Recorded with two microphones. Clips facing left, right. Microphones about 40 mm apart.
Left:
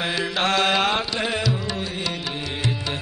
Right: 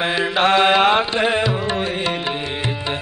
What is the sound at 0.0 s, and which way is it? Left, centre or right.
Music, right.